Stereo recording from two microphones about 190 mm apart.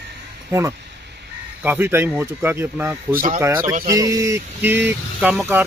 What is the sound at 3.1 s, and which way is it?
Speech, 45° right (ahead or behind).